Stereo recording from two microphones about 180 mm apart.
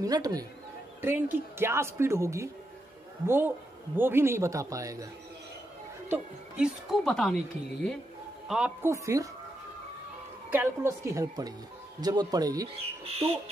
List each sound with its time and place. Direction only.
0.0 s speech: 20° right (ahead or behind)
6.0 s speech: 5° right (ahead or behind)
8.5 s speech: 5° right (ahead or behind)
10.5 s speech: 15° right (ahead or behind)
12.7 s speech: 35° right (ahead or behind)